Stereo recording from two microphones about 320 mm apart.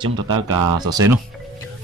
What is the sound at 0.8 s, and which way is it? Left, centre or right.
Speech, centre.